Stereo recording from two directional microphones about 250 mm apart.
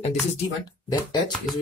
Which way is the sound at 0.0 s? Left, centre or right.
Left.